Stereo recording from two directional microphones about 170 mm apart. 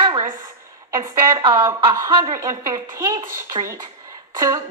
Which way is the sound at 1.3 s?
30° right (ahead or behind).